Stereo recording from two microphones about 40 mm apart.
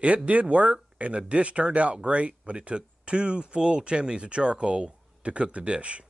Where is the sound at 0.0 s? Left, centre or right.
Right.